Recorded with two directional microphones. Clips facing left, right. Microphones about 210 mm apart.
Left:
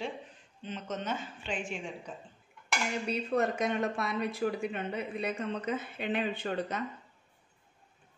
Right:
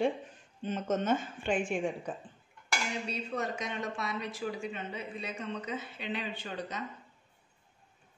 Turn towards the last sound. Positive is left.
turn(degrees=55)  # may be behind; listen again after turning